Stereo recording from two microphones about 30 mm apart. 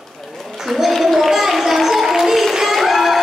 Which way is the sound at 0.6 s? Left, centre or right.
Centre.